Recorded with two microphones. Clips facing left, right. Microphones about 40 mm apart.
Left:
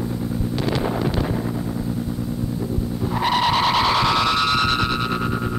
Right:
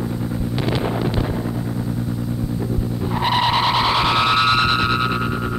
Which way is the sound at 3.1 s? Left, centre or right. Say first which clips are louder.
Right 1 dB; centre.